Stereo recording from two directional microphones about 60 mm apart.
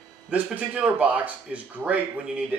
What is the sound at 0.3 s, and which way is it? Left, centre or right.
Speech, right.